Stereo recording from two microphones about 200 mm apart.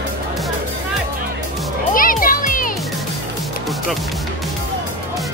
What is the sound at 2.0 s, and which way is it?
Music, 45° left (ahead or behind).